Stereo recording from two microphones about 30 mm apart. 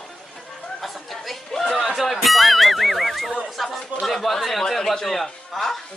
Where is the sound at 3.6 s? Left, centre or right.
Centre.